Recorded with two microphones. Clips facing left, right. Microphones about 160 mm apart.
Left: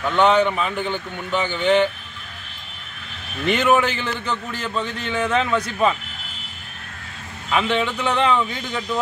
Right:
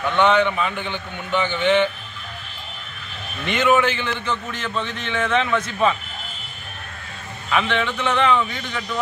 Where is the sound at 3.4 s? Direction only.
40° left (ahead or behind).